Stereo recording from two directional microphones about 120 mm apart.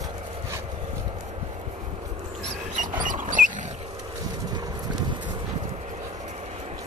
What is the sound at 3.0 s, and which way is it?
Mouse, 90° right.